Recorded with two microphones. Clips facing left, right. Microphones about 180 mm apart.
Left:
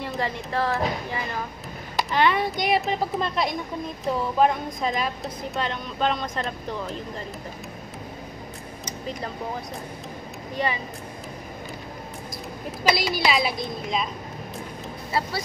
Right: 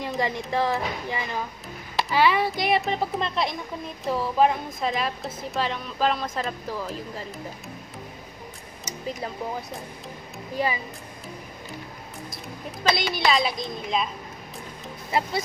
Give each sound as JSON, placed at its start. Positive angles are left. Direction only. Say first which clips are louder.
{"t": 0.2, "sound": "speech", "louder": "right 2 dB", "side_deg": -15}
{"t": 2.0, "sound": "a woman's voice", "louder": "right 1 dB", "side_deg": -5}
{"t": 12.8, "sound": "a woman's voice", "louder": "left 1 dB", "side_deg": 5}
{"t": 15.0, "sound": "speech", "louder": "right 2 dB", "side_deg": -20}